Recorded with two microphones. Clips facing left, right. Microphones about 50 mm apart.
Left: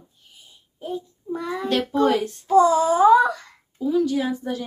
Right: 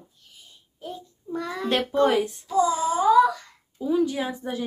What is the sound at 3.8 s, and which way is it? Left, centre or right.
Speech, centre.